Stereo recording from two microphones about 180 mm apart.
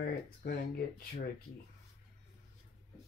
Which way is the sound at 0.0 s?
60° left (ahead or behind).